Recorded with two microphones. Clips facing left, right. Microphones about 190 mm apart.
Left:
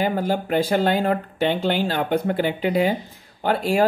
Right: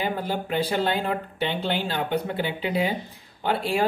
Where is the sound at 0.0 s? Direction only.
45° left (ahead or behind).